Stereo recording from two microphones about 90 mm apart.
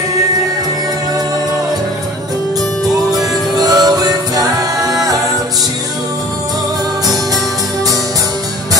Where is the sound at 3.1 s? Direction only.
45° right (ahead or behind).